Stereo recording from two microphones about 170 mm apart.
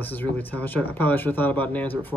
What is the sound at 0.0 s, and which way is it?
Speech, 10° left (ahead or behind).